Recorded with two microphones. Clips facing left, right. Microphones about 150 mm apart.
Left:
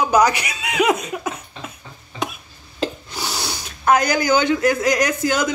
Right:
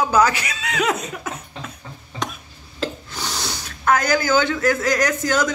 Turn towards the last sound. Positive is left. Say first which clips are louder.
# even
turn(degrees=15)  # may be behind; listen again after turning